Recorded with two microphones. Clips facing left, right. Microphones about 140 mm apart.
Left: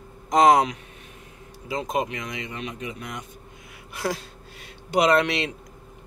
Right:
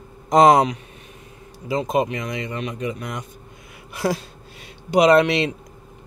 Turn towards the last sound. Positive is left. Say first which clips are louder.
# right 5 dB
turn(degrees=-25)  # may be behind; listen again after turning